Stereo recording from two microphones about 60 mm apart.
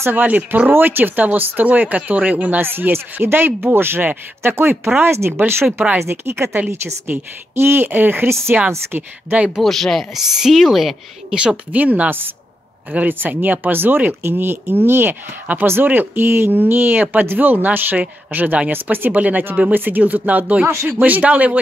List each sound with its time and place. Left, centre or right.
0.1 s speech: right
2.6 s speech: right
9.6 s a woman's voice: centre
10.1 s a woman's voice: centre
11.3 s a woman's voice: centre
11.8 s speech: right
20.6 s speech: right
21.0 s speech: right